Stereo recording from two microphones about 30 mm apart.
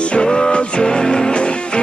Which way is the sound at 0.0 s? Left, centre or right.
Left.